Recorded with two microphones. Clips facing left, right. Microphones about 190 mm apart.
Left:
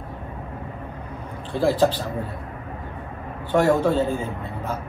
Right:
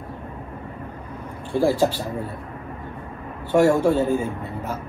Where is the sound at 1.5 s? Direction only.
10° right (ahead or behind).